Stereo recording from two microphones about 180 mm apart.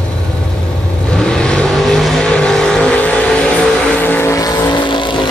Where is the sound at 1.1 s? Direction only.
5° left (ahead or behind); by 5.3 s 25° left (ahead or behind).